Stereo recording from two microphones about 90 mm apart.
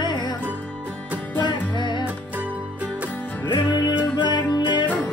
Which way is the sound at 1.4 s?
55° left (ahead or behind).